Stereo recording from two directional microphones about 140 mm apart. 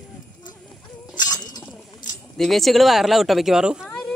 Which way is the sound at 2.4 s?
Centre (ahead or behind).